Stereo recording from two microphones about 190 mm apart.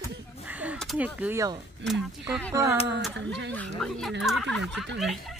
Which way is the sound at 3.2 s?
65° right (ahead or behind).